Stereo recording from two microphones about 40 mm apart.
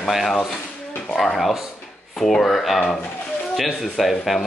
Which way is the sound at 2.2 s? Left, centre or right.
Centre.